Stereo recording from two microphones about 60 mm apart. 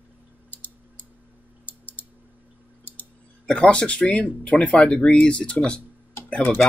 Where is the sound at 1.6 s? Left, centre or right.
Left.